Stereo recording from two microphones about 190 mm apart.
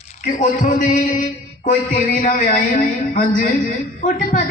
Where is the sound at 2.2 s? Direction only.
40° left (ahead or behind).